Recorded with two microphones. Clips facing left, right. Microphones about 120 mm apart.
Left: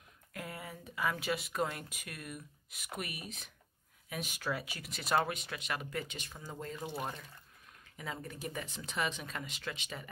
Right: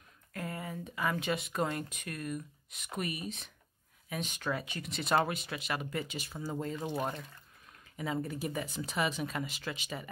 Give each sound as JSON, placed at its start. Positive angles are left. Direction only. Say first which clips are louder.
{"t": 0.3, "sound": "speech", "louder": "right 5 dB", "side_deg": 5}
{"t": 6.5, "sound": "speech", "louder": "right 5 dB", "side_deg": -20}
{"t": 8.0, "sound": "speech", "louder": "right 7 dB", "side_deg": -5}